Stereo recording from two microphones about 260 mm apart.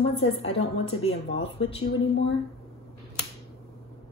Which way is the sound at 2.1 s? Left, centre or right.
Left.